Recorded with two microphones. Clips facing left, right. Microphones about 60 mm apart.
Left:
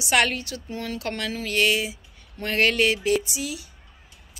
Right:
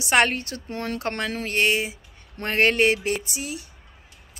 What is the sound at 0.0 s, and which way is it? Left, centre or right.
Speech, right.